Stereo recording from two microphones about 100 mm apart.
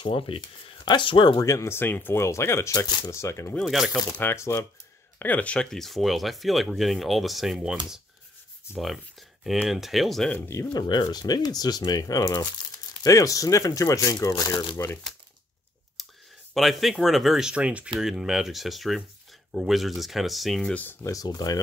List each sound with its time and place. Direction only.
0.0 s speech: 60° left (ahead or behind)
1.4 s speech: 30° left (ahead or behind)
3.5 s speech: centre (ahead or behind)
3.9 s speech: 40° left (ahead or behind)
4.2 s speech: 25° left (ahead or behind)
5.2 s speech: 15° left (ahead or behind); by 7.7 s 5° right (ahead or behind)
8.7 s speech: centre (ahead or behind)
10.7 s speech: 45° left (ahead or behind)
16.0 s clicking: centre (ahead or behind)
16.5 s speech: centre (ahead or behind)
21.0 s speech: 35° left (ahead or behind)